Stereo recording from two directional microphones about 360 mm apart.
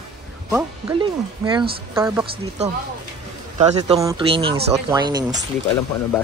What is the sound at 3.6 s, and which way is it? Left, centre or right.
Speech, centre.